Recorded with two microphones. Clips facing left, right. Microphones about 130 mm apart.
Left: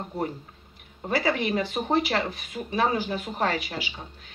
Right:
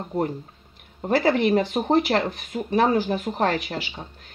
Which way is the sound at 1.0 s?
50° right (ahead or behind).